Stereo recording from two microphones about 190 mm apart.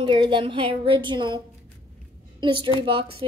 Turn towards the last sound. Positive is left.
turn(degrees=-30)  # may be behind; listen again after turning